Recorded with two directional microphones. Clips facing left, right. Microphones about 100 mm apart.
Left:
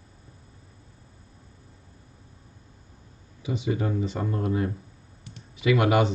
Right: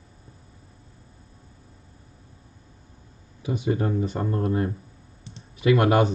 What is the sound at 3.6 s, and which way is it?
Speech, 35° right (ahead or behind).